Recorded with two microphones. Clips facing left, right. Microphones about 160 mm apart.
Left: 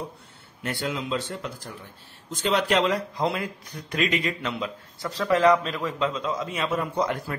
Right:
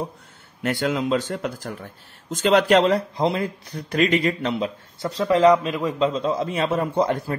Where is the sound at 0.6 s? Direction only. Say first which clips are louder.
Right 7 dB; 65° right (ahead or behind); by 3.0 s 45° right (ahead or behind).